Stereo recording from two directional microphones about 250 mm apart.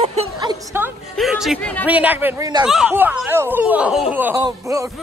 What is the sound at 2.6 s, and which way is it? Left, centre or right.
Speech, centre.